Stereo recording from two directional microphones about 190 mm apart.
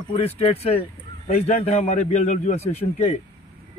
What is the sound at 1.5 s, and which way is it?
A man's voice, 35° left (ahead or behind).